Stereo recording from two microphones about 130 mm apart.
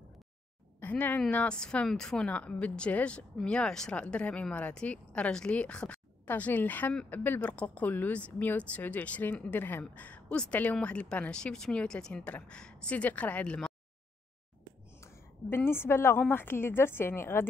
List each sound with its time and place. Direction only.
0.7 s speech: 15° left (ahead or behind)
15.5 s speech: 20° left (ahead or behind)